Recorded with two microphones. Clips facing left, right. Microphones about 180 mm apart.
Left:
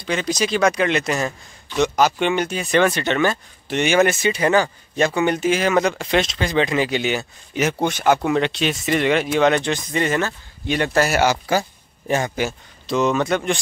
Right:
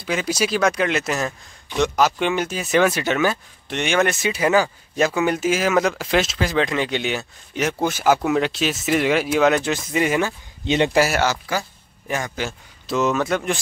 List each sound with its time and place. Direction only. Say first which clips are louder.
0.0 s speech: even; 5° right (ahead or behind)
10.7 s a man's voice: right 3 dB; 20° right (ahead or behind)
12.4 s a man's voice: left 4 dB; 15° left (ahead or behind)
12.8 s speech: left 1 dB; centre (ahead or behind)